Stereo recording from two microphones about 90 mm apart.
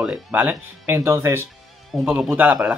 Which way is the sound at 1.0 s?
30° right (ahead or behind).